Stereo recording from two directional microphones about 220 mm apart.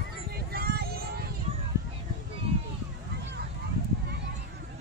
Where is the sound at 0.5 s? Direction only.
45° right (ahead or behind).